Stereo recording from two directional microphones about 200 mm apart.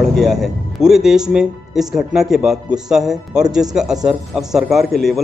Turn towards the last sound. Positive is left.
turn(degrees=0)  # may be behind; listen again after turning